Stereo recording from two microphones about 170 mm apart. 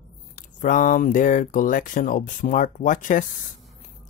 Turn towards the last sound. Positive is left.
turn(degrees=50)  # may be behind; listen again after turning